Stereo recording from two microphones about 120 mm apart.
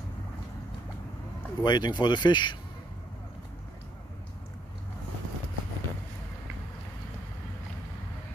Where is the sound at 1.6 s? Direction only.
40° left (ahead or behind).